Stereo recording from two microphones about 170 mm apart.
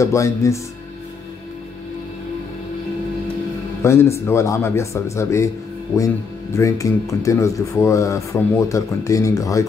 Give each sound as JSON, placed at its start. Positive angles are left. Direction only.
{"t": 0.0, "sound": "speech", "side_deg": 15}
{"t": 3.8, "sound": "speech", "side_deg": 15}